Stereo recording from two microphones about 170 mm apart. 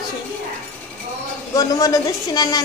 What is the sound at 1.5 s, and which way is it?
Speech, 20° left (ahead or behind).